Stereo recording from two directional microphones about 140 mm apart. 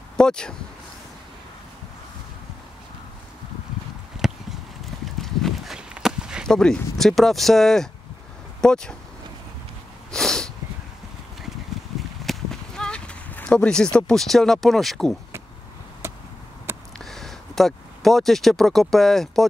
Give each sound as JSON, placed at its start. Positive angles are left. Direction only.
{"t": 0.2, "sound": "speech", "side_deg": 5}
{"t": 4.2, "sound": "a sound", "side_deg": 0}
{"t": 5.2, "sound": "walk", "side_deg": 0}
{"t": 8.5, "sound": "speech", "side_deg": 5}
{"t": 10.1, "sound": "sneeze", "side_deg": 5}
{"t": 12.3, "sound": "clip-clop", "side_deg": 5}
{"t": 13.9, "sound": "speech", "side_deg": 5}
{"t": 16.0, "sound": "chop", "side_deg": -20}
{"t": 16.7, "sound": "a sound", "side_deg": -15}
{"t": 17.0, "sound": "speech", "side_deg": 0}